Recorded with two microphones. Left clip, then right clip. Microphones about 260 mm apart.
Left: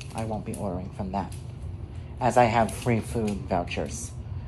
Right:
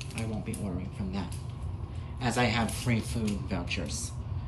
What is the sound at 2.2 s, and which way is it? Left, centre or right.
A man's voice, centre.